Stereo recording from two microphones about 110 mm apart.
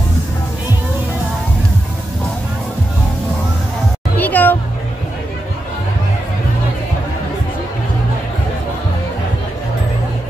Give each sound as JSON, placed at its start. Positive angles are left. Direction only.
{"t": 4.2, "sound": "music", "side_deg": 15}